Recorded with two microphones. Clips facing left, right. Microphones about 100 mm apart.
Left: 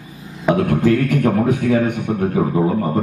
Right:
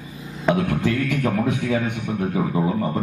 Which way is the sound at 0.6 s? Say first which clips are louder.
Left 6 dB; 45° left (ahead or behind).